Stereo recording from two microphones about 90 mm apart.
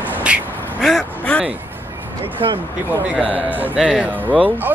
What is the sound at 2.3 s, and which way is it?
Speech, 80° right.